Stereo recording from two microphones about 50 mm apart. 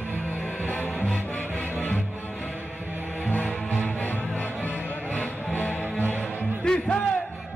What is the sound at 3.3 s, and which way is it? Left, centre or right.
Music, left.